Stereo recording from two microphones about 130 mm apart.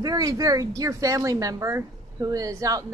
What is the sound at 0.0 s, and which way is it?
A woman's voice, 30° right (ahead or behind).